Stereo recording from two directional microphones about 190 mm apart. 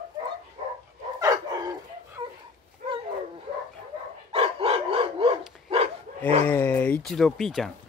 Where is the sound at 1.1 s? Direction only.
20° right (ahead or behind).